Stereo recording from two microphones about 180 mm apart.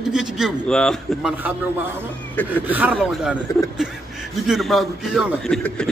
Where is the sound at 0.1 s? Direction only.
Centre (ahead or behind).